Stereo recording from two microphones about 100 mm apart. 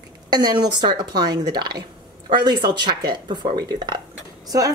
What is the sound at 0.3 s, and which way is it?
Speech, 45° right (ahead or behind).